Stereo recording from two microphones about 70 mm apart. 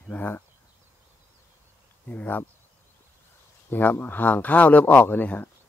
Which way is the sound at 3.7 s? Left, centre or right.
Left.